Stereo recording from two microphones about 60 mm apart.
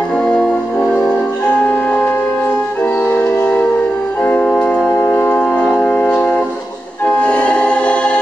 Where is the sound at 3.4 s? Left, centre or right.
Left.